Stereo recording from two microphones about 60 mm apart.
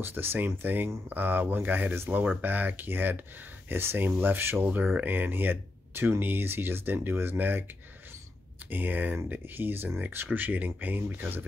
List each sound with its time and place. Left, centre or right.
0.0 s speech: right
4.9 s speech: right
8.6 s speech: right